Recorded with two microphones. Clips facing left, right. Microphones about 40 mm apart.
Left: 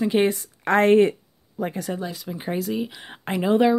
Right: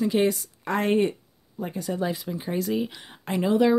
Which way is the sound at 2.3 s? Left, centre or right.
Centre.